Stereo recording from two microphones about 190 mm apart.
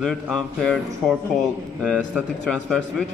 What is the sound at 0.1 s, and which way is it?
Speech, centre (ahead or behind).